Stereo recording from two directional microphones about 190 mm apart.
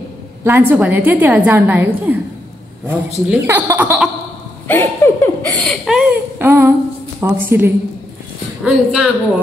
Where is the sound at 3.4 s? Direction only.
10° right (ahead or behind).